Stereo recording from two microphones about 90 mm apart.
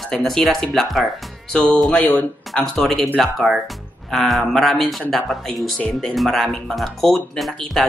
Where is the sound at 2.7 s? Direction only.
Centre (ahead or behind).